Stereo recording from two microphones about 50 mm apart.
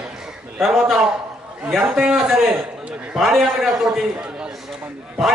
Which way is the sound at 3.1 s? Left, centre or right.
Centre.